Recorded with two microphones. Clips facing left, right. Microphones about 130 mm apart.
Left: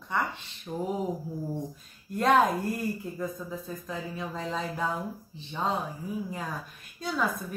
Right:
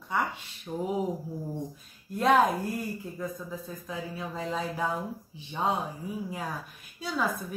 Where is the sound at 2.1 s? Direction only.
Centre (ahead or behind).